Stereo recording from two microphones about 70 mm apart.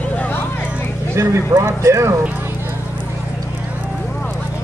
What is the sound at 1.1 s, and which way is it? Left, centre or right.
Speech, right.